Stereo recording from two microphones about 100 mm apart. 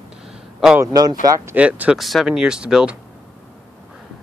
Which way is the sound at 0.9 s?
40° right (ahead or behind).